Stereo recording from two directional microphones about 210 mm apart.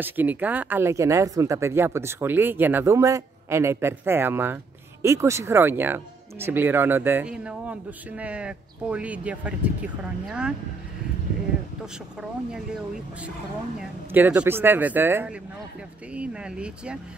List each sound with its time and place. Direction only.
0.0 s speech: 10° right (ahead or behind)
11.8 s speech: 5° right (ahead or behind)
13.7 s speech: 5° right (ahead or behind)